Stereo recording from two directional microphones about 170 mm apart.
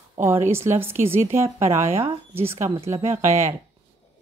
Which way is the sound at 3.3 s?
40° right (ahead or behind).